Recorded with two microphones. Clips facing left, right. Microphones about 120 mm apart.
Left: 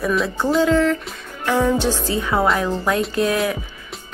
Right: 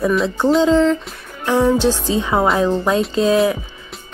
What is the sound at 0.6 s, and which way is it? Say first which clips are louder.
Music: right 1 dB; 25° right (ahead or behind).